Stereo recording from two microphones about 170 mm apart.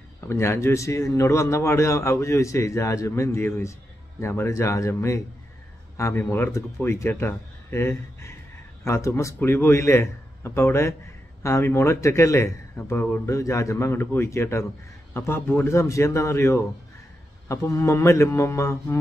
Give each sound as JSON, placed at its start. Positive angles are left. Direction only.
{"t": 0.3, "sound": "a man's voice", "side_deg": 15}